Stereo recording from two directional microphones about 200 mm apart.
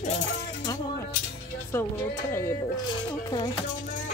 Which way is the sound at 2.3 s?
15° left (ahead or behind).